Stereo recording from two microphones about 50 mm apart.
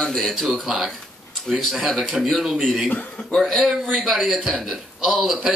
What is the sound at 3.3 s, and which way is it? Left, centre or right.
A man's voice, centre.